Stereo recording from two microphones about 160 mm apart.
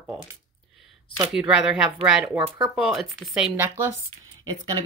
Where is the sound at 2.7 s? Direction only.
5° right (ahead or behind).